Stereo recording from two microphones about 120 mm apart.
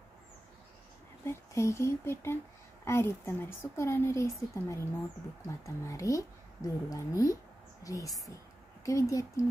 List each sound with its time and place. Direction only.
1.2 s speech: 25° left (ahead or behind)